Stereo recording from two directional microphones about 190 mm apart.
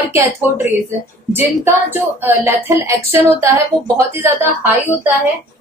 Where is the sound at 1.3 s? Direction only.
10° right (ahead or behind).